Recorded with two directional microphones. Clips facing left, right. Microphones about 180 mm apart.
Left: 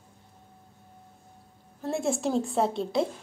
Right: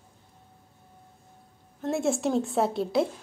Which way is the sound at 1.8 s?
Centre (ahead or behind).